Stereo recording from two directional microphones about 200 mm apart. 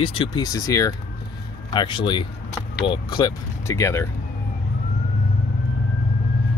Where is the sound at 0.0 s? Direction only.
25° left (ahead or behind).